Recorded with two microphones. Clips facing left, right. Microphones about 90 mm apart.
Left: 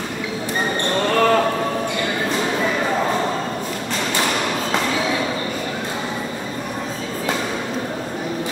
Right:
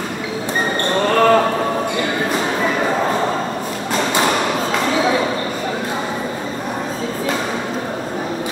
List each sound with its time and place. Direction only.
1.0 s basketball bounce: 20° right (ahead or behind)